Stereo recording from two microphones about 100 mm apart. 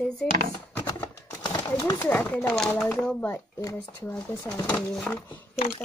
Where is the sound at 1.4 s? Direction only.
40° left (ahead or behind).